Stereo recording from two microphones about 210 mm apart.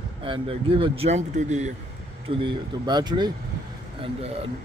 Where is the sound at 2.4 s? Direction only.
20° right (ahead or behind).